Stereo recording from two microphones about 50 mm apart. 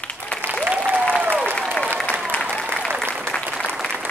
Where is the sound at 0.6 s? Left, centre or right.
Right.